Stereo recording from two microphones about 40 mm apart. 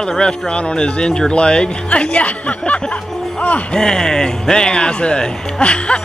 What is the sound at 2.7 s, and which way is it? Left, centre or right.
Music, left.